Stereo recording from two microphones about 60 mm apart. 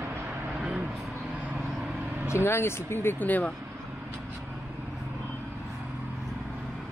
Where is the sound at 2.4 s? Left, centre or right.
Left.